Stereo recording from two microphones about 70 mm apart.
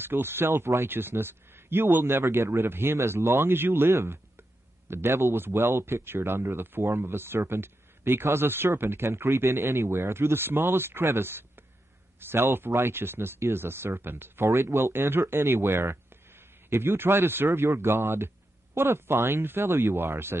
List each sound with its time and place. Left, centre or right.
0.0 s speech: right